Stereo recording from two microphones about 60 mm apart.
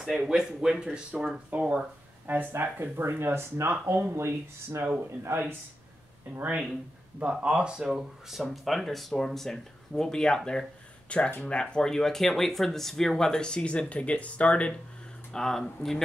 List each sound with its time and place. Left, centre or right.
0.0 s speech: centre
2.2 s speech: right
6.3 s speech: right
7.2 s speech: centre; by 14.8 s left
15.3 s speech: centre